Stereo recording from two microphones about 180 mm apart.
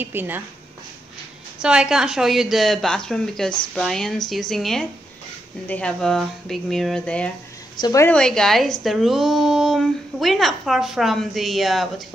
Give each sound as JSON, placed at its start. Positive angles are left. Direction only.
{"t": 0.0, "sound": "a woman's voice", "side_deg": -10}
{"t": 1.6, "sound": "a woman's voice", "side_deg": -5}
{"t": 7.8, "sound": "a woman's voice", "side_deg": 20}
{"t": 8.1, "sound": "a woman's voice", "side_deg": 5}